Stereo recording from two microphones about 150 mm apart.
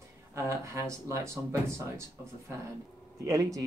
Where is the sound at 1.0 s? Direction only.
20° right (ahead or behind).